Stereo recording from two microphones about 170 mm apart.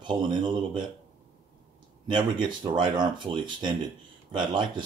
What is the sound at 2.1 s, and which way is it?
Speech, 25° right (ahead or behind).